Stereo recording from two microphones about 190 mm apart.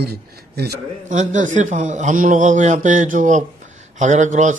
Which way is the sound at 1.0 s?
40° right (ahead or behind).